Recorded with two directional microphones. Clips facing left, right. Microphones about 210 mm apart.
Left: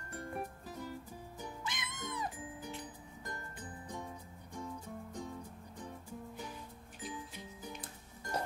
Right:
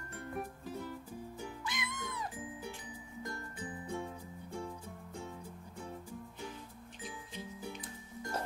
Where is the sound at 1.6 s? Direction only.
20° left (ahead or behind).